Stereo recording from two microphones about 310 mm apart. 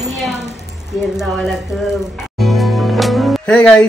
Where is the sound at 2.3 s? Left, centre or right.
Centre.